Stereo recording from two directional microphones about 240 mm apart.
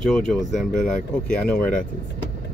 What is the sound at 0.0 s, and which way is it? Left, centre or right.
Speech, centre.